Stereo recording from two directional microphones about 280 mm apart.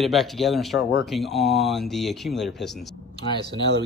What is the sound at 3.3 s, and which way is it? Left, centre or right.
Speech, centre.